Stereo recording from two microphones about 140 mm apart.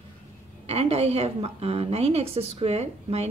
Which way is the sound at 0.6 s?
45° right (ahead or behind).